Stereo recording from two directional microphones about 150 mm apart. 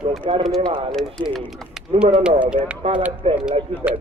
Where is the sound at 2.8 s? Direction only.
45° right (ahead or behind).